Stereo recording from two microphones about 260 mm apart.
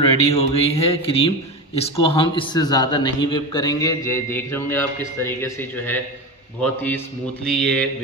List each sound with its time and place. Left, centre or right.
0.3 s a man's voice: left; by 7.0 s centre
7.4 s mantra: centre